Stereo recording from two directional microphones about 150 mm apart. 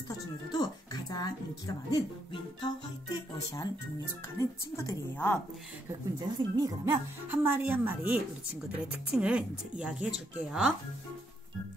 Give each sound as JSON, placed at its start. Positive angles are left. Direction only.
{"t": 1.1, "sound": "a woman's voice", "side_deg": 25}
{"t": 5.9, "sound": "speech", "side_deg": -30}
{"t": 7.2, "sound": "speech", "side_deg": -15}